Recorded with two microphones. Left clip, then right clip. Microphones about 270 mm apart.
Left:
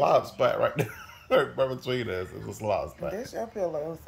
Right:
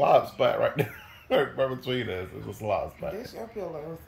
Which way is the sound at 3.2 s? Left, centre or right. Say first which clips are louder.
Left 5 dB; left.